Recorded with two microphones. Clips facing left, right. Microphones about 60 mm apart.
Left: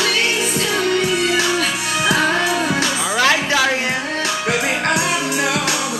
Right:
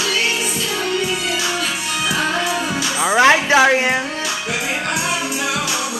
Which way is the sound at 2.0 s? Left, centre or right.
Left.